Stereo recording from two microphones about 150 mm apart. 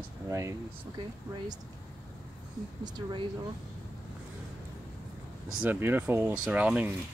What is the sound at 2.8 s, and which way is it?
Speech, 35° right (ahead or behind).